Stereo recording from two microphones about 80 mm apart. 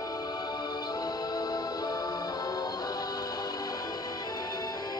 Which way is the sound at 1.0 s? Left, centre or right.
Left.